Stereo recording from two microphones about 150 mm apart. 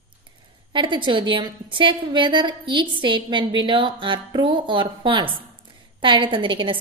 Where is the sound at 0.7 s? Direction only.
30° right (ahead or behind).